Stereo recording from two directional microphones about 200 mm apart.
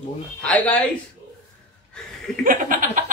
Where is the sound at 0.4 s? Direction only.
5° left (ahead or behind).